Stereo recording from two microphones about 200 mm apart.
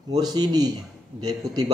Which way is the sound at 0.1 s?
20° right (ahead or behind).